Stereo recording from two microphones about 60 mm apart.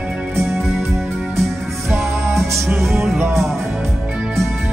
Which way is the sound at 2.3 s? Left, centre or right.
Centre.